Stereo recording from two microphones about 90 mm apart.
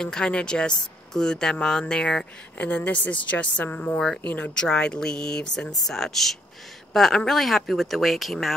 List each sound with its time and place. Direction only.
0.0 s speech: 10° left (ahead or behind)